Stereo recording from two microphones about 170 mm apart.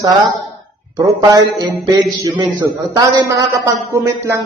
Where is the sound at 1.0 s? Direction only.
25° right (ahead or behind).